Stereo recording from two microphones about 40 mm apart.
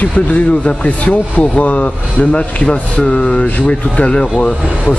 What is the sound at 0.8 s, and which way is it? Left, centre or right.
Speech, left.